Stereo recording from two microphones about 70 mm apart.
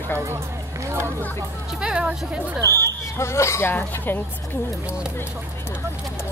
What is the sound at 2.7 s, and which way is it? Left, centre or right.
Speech, left.